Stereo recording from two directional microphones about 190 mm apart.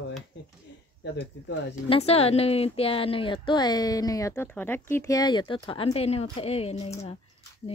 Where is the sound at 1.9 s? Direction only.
30° left (ahead or behind).